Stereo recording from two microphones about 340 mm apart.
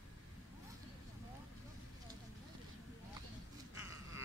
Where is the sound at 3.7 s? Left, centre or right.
Centre.